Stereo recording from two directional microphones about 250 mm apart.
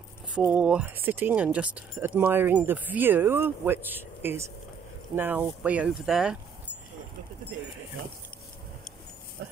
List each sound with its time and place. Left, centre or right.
0.3 s speech: centre
9.4 s dog: right